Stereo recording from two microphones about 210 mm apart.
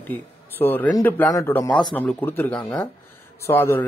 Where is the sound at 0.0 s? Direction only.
10° left (ahead or behind).